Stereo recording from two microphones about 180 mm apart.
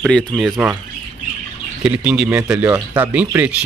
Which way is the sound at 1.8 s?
5° right (ahead or behind).